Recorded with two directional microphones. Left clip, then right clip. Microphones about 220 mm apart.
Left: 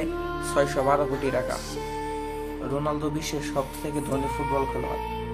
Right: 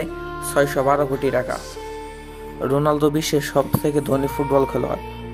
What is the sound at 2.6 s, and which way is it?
A man's voice, 30° right (ahead or behind).